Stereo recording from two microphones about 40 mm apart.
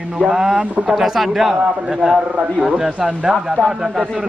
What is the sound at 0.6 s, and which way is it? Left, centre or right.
Speech, right.